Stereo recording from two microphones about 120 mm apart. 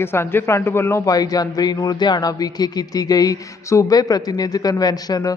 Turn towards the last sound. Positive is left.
turn(degrees=30)  # may be behind; listen again after turning